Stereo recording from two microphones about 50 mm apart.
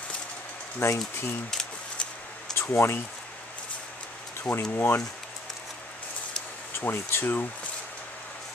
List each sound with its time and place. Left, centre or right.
0.7 s speech: left
2.5 s speech: left
4.4 s speech: left
6.8 s speech: left